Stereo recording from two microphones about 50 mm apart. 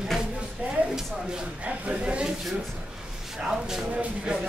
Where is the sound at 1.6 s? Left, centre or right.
Right.